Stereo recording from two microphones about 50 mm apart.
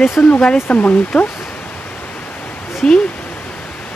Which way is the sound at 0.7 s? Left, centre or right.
Left.